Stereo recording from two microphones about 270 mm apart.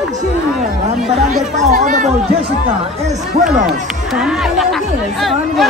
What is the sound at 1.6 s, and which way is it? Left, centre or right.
Speech, right.